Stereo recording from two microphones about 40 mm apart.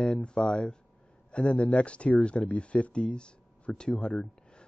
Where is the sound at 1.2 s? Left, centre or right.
Left.